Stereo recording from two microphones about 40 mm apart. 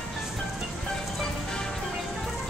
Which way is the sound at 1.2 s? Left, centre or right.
Centre.